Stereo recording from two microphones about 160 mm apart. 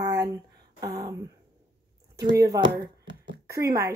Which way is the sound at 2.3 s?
20° right (ahead or behind).